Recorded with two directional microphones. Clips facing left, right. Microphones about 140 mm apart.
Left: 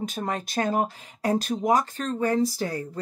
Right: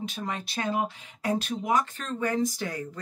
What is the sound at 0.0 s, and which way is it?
Speech, 45° left (ahead or behind).